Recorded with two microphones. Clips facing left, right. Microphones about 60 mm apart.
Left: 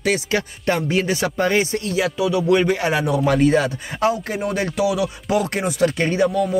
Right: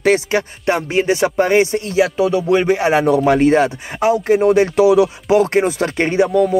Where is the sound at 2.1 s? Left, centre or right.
Right.